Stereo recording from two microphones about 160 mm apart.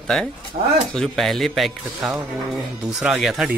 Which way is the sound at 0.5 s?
50° right (ahead or behind).